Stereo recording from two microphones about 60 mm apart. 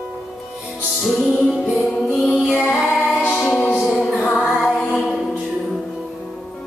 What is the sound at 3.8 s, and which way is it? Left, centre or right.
Music, centre.